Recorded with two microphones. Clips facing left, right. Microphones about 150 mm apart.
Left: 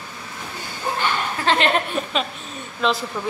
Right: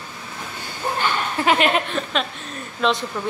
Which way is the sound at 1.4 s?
25° right (ahead or behind).